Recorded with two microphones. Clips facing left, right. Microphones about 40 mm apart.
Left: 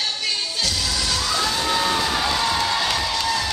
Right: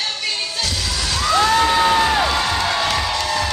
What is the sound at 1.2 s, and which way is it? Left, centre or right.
Bang, right.